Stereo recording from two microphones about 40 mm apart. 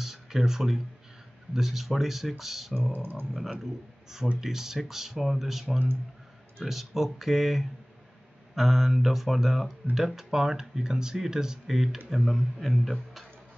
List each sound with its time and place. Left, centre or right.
0.0 s a sound: centre
1.5 s speech: centre
2.9 s speech: right
4.4 s speech: centre